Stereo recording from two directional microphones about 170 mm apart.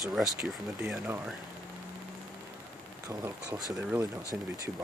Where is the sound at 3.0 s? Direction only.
20° right (ahead or behind).